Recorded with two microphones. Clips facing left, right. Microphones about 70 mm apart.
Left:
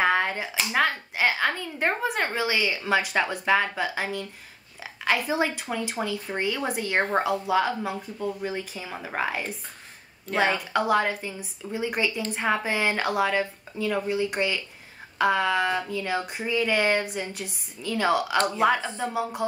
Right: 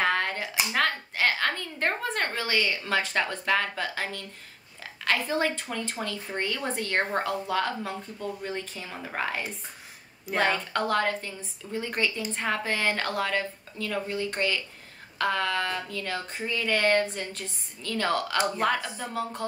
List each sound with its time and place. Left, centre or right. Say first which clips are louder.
0.0 s a sound: left 3 dB; centre
0.7 s a woman's voice: left 3 dB; centre
18.8 s speech: left 5 dB; left